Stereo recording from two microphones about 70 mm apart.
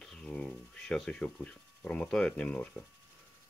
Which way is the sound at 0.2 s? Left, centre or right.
Centre.